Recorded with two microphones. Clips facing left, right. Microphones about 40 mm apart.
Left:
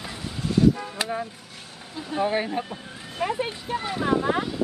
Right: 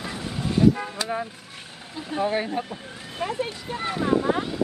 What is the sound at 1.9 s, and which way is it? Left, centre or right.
Speech, centre.